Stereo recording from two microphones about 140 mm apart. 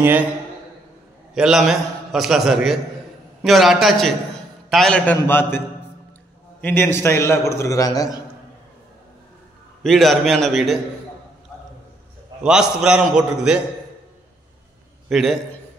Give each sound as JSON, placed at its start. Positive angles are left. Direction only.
{"t": 1.3, "sound": "a man's voice", "side_deg": -5}
{"t": 6.6, "sound": "a man's voice", "side_deg": 15}
{"t": 9.8, "sound": "a man's voice", "side_deg": 0}
{"t": 12.4, "sound": "a man's voice", "side_deg": -5}
{"t": 15.0, "sound": "a man's voice", "side_deg": 0}